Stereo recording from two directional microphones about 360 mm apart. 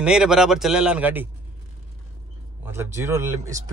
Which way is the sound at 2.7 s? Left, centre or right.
Centre.